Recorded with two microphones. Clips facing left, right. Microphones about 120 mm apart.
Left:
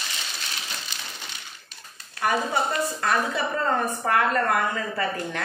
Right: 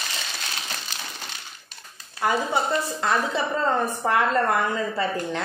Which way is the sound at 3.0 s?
20° right (ahead or behind).